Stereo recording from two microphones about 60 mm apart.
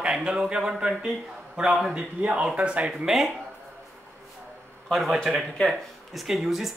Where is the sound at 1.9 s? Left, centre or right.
Centre.